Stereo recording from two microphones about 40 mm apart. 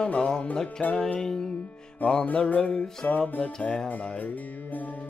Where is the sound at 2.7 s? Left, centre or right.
Centre.